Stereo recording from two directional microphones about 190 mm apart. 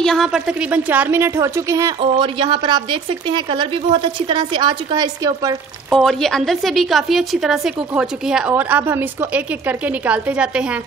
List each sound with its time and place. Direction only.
0.0 s a woman's voice: centre (ahead or behind); by 5.6 s 20° right (ahead or behind)
5.9 s a woman's voice: centre (ahead or behind)